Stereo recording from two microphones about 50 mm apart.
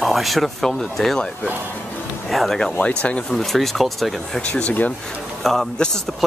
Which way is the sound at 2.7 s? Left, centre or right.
Left.